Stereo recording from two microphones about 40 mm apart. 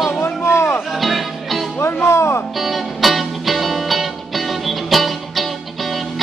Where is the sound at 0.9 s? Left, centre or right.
Centre.